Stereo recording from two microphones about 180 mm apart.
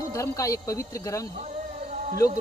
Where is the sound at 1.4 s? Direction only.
40° right (ahead or behind).